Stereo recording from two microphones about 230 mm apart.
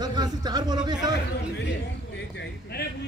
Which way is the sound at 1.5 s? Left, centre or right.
Left.